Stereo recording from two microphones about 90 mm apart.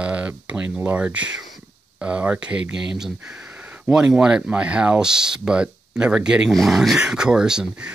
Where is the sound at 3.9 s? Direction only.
10° right (ahead or behind).